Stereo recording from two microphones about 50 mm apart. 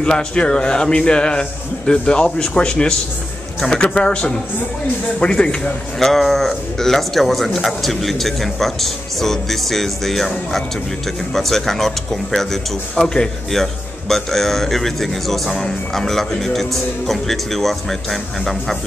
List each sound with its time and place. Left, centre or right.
0.0 s a man's voice: centre
5.9 s a man's voice: centre